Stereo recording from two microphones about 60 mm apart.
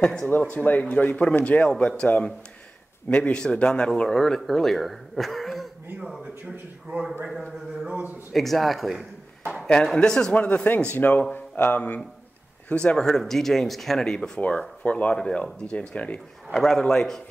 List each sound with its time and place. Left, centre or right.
0.0 s speech: centre
0.4 s a man's voice: left; by 5.7 s centre
6.9 s speech: right
8.3 s a man's voice: centre
9.9 s speech: centre
10.3 s speech: left
12.7 s speech: centre
14.8 s speech: left
15.1 s speech: centre
16.5 s speech: centre